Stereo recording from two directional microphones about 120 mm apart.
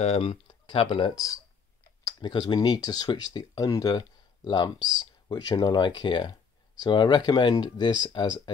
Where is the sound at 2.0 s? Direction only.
30° left (ahead or behind).